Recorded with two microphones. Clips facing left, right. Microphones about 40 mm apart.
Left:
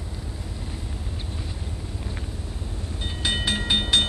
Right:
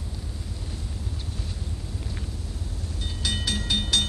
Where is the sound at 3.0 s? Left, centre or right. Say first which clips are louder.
Left 4 dB; left.